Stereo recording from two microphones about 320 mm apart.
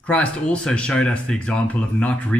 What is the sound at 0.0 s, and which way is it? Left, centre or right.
Speech, centre.